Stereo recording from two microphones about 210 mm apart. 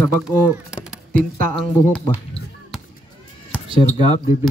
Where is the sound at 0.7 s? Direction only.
5° right (ahead or behind).